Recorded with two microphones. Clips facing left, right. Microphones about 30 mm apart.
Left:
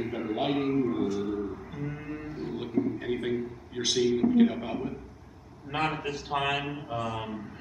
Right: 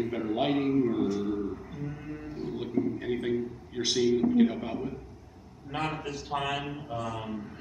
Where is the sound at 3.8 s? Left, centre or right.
Centre.